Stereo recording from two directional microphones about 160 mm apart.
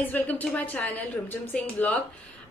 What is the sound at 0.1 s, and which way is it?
A woman's voice, 10° left (ahead or behind).